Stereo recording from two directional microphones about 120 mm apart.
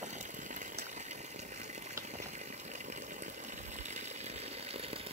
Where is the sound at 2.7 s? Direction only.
85° right; by 5.1 s 55° right (ahead or behind).